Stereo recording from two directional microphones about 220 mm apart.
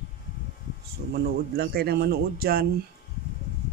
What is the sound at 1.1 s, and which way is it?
A man's voice, 45° right (ahead or behind).